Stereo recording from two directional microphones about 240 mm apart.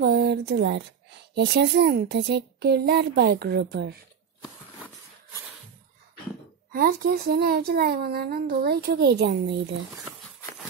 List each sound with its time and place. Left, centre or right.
0.0 s a sound: right
1.3 s speech: right
6.7 s a child's voice: right